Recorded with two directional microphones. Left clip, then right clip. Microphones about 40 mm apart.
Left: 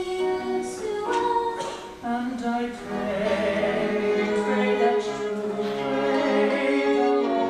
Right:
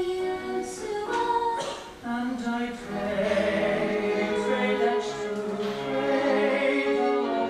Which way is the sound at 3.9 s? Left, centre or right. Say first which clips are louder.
Left 3 dB; centre.